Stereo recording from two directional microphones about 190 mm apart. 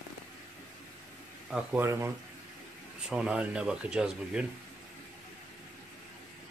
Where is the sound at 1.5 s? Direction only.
10° right (ahead or behind).